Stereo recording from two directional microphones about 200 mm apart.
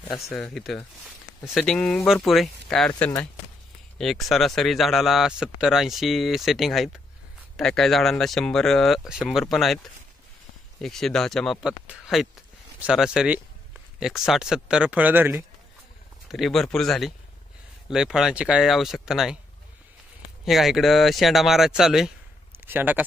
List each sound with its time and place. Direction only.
0.3 s a man's voice: centre (ahead or behind)
2.9 s speech: 15° left (ahead or behind)
4.0 s a man's voice: centre (ahead or behind)
10.8 s a man's voice: centre (ahead or behind)
16.3 s a man's voice: centre (ahead or behind)
20.4 s speech: centre (ahead or behind)